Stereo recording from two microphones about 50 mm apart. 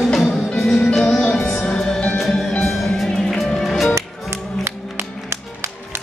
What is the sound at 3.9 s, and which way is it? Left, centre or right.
Music, right.